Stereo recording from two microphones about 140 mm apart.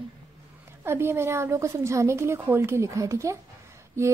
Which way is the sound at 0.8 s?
15° right (ahead or behind).